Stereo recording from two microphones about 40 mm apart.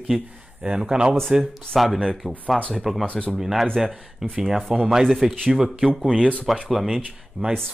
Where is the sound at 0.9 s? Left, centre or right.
Centre.